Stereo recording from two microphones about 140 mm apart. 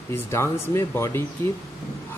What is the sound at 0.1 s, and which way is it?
Speech, 20° left (ahead or behind).